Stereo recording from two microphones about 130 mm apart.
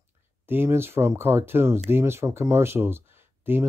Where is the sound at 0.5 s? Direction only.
15° right (ahead or behind).